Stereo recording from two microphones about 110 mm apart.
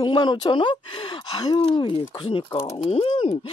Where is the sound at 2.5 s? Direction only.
30° left (ahead or behind).